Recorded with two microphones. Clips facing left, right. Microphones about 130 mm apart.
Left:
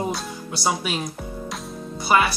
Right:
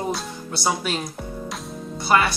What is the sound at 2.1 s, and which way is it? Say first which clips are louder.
Speech: even; 10° left (ahead or behind).